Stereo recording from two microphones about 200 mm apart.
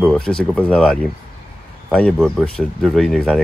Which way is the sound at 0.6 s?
5° left (ahead or behind).